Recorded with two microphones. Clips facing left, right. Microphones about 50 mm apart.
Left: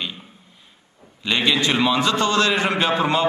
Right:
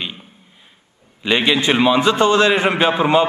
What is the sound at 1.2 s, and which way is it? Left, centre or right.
A man's voice, right.